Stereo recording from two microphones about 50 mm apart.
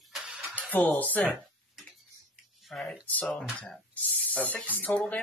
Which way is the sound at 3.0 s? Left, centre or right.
Left.